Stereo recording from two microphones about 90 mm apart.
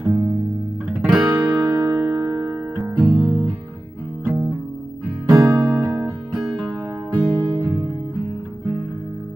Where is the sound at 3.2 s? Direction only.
55° right (ahead or behind).